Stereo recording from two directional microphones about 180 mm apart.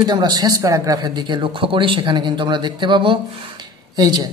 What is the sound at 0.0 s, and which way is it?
A man's voice, 20° right (ahead or behind).